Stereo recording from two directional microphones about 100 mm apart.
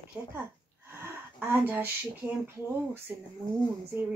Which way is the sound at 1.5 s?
20° right (ahead or behind).